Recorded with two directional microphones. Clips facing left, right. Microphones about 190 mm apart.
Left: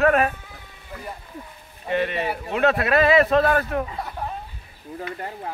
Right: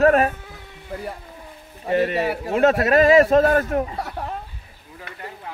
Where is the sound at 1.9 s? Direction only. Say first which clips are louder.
Right 4 dB; 40° right (ahead or behind).